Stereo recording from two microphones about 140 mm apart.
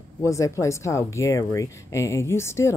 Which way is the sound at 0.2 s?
20° left (ahead or behind).